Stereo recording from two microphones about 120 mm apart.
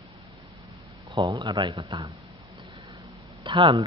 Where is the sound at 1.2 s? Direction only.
35° right (ahead or behind).